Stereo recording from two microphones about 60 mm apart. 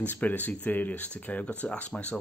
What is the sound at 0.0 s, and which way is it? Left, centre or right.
Speech, left.